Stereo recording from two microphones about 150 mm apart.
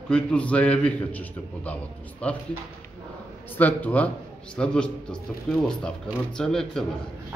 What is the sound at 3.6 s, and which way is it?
A man's voice, 10° left (ahead or behind).